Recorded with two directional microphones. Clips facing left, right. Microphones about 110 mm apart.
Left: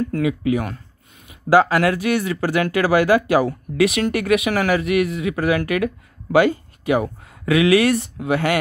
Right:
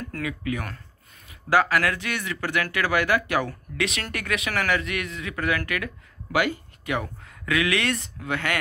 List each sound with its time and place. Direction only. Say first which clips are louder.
0.1 s speech: left 10 dB; 20° left (ahead or behind)